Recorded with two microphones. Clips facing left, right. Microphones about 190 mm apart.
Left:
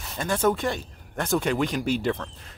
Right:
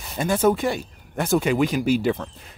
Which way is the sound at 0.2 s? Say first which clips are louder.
Right 4 dB; 10° right (ahead or behind).